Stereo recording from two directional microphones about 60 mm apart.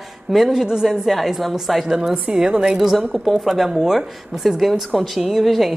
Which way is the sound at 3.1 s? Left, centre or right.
Centre.